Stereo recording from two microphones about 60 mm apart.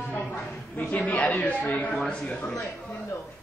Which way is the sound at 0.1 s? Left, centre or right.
Left.